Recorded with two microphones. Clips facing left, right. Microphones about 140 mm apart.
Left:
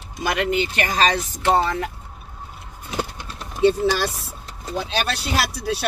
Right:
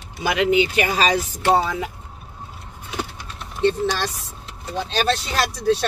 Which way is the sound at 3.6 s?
5° left (ahead or behind).